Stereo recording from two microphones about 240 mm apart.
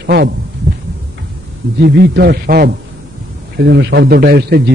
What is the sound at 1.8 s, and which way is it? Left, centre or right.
A man's voice, right.